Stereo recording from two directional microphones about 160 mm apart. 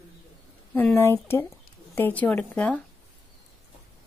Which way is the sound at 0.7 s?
10° left (ahead or behind).